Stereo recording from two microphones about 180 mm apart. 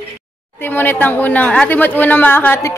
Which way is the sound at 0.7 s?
10° left (ahead or behind).